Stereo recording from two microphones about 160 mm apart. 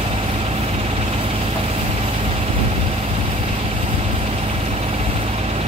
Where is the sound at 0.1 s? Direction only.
40° right (ahead or behind).